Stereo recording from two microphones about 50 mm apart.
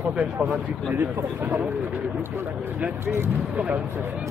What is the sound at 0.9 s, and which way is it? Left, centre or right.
Speech, right.